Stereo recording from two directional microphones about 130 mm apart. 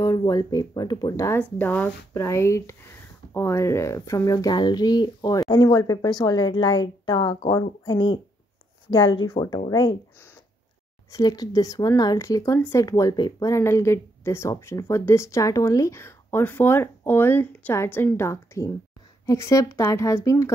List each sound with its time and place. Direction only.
0.0 s speech: 25° left (ahead or behind)
11.1 s speech: 30° left (ahead or behind)